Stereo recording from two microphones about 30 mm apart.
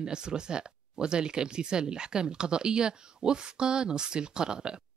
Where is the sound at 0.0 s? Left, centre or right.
Right.